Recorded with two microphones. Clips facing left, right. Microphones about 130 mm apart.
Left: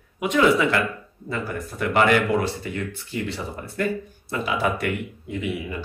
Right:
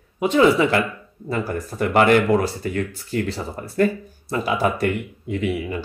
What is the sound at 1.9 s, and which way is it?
Speech, 45° right (ahead or behind).